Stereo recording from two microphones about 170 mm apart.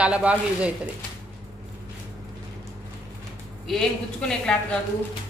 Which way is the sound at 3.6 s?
5° left (ahead or behind).